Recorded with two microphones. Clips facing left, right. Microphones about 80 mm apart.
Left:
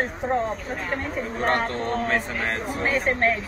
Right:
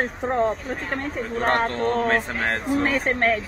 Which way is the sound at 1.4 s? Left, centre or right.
Right.